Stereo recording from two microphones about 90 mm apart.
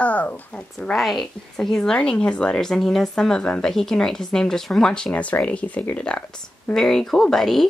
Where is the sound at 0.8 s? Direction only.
5° left (ahead or behind).